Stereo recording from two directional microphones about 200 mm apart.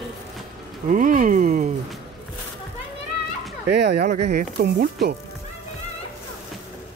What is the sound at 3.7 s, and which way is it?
Speech, 55° right (ahead or behind).